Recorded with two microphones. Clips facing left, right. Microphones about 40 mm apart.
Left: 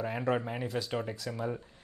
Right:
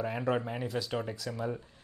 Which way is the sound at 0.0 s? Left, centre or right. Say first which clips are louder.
Even; centre.